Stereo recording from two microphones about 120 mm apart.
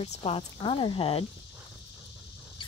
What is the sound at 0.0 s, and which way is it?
Speech, 60° left (ahead or behind).